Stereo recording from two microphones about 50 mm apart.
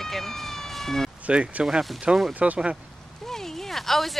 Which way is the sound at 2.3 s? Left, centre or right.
Right.